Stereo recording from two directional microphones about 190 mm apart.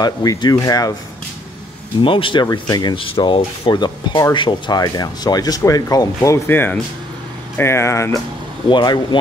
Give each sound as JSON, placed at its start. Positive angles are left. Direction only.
{"t": 0.0, "sound": "speech", "side_deg": 20}
{"t": 2.0, "sound": "speech", "side_deg": 25}